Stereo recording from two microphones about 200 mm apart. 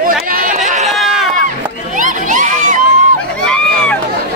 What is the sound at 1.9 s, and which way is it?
Crowd, 40° right (ahead or behind).